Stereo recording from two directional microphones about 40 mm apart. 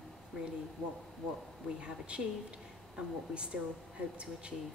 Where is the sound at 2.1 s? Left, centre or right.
Right.